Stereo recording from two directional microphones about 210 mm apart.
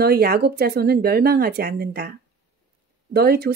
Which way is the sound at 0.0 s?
50° right (ahead or behind).